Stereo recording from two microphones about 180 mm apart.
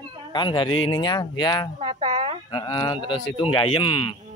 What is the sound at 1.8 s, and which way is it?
Speech, 30° right (ahead or behind).